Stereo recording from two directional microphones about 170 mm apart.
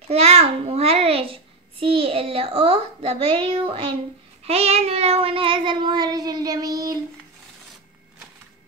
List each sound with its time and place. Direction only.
0.1 s a child's voice: 40° right (ahead or behind)
4.5 s child singing: 35° right (ahead or behind); by 7.0 s 20° right (ahead or behind)